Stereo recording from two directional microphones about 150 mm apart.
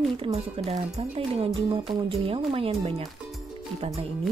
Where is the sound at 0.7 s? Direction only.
40° right (ahead or behind).